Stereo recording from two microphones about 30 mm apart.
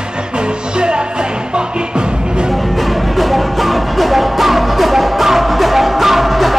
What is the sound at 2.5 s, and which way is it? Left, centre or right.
Music, centre.